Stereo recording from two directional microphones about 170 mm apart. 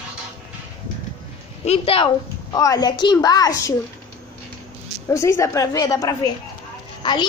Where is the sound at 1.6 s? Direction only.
35° left (ahead or behind).